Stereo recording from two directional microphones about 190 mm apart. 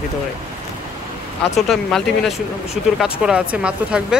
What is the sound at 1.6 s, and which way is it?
Speech, centre (ahead or behind).